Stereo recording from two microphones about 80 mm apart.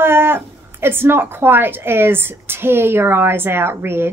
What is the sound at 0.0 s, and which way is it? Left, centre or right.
A woman's voice, right.